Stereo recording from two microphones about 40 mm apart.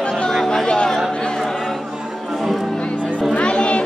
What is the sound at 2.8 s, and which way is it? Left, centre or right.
Music, left.